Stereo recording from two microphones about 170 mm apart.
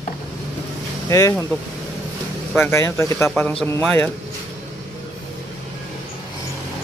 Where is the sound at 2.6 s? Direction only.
15° left (ahead or behind).